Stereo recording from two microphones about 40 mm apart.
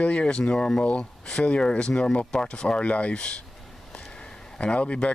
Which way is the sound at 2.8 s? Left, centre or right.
Left.